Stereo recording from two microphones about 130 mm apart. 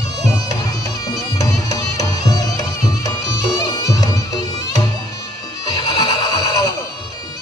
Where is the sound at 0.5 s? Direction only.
30° left (ahead or behind).